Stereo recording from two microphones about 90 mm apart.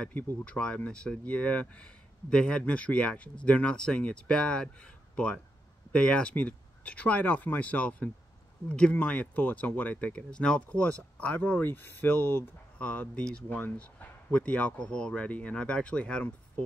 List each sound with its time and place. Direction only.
0.5 s speech: 10° left (ahead or behind)